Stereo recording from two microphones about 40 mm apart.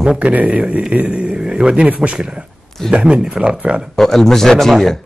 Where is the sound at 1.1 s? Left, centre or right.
Right.